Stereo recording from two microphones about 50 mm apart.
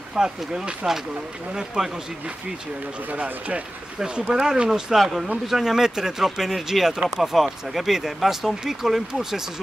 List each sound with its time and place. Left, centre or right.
0.1 s speech: centre
3.1 s speech: right
4.0 s speech: centre
4.9 s speech: centre